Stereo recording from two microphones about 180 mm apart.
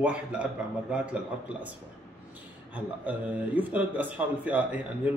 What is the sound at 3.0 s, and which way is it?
A man's voice, 10° right (ahead or behind).